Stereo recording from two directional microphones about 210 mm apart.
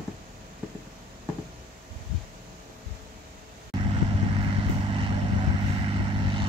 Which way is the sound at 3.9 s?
25° right (ahead or behind).